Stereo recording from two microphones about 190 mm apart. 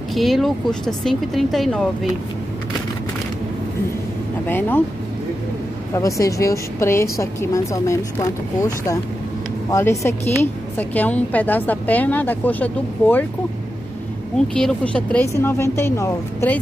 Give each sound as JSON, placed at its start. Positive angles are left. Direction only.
{"t": 0.1, "sound": "speech", "side_deg": 0}
{"t": 4.5, "sound": "a woman's voice", "side_deg": 10}
{"t": 5.9, "sound": "a woman's voice", "side_deg": 15}
{"t": 14.5, "sound": "a woman's voice", "side_deg": 5}